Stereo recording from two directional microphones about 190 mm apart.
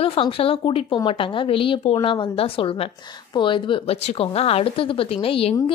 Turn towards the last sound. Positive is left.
turn(degrees=30)  # may be behind; listen again after turning